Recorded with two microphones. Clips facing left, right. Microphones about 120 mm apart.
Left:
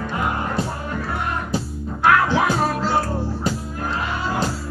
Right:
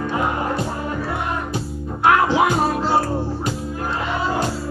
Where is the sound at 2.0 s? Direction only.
20° right (ahead or behind).